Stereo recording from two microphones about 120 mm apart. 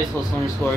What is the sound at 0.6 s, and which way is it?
Speech, 15° left (ahead or behind).